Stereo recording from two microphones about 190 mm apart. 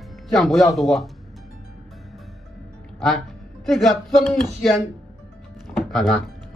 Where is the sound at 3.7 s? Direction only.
Centre (ahead or behind).